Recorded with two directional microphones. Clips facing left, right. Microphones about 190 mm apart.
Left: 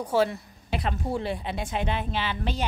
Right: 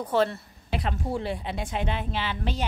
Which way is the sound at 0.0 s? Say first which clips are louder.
Even; 10° left (ahead or behind).